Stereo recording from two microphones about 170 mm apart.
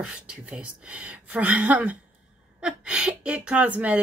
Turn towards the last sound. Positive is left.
turn(degrees=-10)  # may be behind; listen again after turning